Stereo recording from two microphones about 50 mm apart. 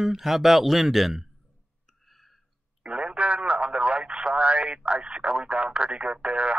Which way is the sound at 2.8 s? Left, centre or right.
Right.